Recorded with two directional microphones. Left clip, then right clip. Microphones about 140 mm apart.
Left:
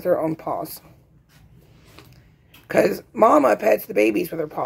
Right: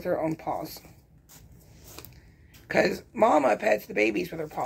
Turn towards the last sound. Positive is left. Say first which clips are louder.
# left 7 dB
turn(degrees=50)  # may be behind; listen again after turning